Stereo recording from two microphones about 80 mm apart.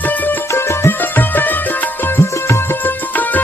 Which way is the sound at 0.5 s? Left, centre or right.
Left.